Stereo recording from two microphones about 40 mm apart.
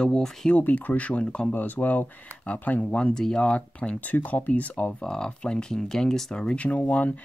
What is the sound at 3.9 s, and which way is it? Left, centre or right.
Speech, left.